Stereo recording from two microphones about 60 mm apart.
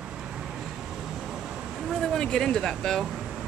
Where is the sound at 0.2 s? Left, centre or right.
Centre.